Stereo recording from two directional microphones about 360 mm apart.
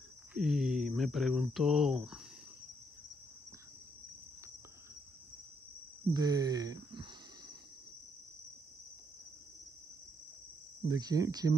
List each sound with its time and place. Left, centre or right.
0.3 s speech: centre
6.1 s cricket: centre
10.9 s speech: centre